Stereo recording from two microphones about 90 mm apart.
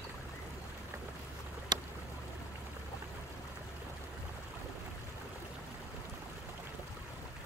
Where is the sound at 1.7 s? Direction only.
50° right (ahead or behind).